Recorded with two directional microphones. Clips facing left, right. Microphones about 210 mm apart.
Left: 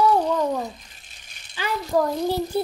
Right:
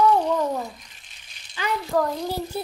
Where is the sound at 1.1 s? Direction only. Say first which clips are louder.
Left 2 dB; 45° left (ahead or behind).